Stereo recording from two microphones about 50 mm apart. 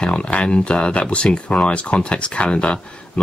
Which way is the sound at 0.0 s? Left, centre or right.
Left.